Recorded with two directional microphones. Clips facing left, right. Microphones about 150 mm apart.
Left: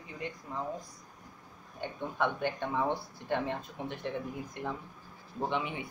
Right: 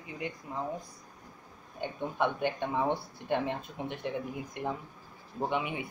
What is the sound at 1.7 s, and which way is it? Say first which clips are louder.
Speech: right 2 dB; 15° right (ahead or behind).